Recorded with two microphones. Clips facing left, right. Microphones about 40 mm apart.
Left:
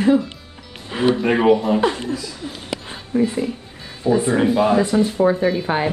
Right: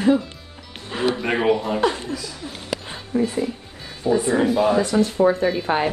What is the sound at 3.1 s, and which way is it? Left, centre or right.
Speech, left.